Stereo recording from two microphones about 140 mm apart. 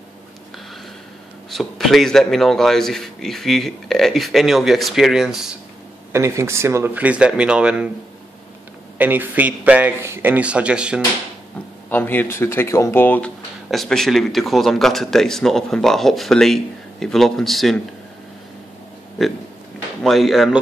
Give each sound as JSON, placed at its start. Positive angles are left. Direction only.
{"t": 1.5, "sound": "speech", "side_deg": 0}
{"t": 6.1, "sound": "a man's voice", "side_deg": -20}
{"t": 8.9, "sound": "a man's voice", "side_deg": -15}
{"t": 11.9, "sound": "speech", "side_deg": 15}
{"t": 13.7, "sound": "speech", "side_deg": 0}
{"t": 20.0, "sound": "speech", "side_deg": 0}